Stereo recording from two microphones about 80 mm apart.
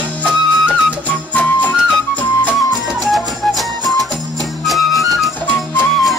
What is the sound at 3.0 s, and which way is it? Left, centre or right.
Music, centre.